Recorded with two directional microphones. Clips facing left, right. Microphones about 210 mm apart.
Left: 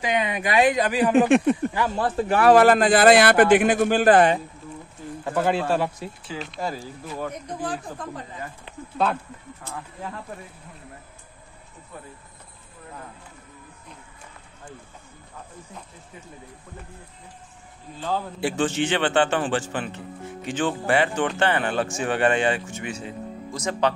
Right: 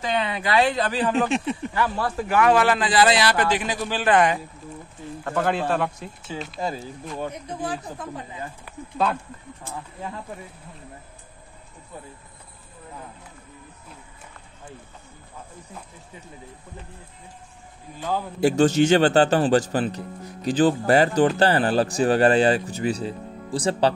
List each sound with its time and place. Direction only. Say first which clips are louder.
0.0 s speech: left 1 dB; 15° left (ahead or behind)
1.3 s speech: left 7 dB; 55° left (ahead or behind)
1.7 s speech: left 1 dB; 20° left (ahead or behind)
5.2 s speech: left 1 dB; 10° left (ahead or behind)
6.6 s speech: right 1 dB; 20° right (ahead or behind)
7.6 s speech: right 1 dB; 10° right (ahead or behind)
8.9 s speech: even; 5° left (ahead or behind)
18.4 s a man's voice: right 8 dB; 40° right (ahead or behind)